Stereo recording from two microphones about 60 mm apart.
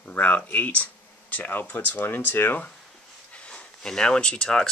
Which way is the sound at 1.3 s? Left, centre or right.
Left.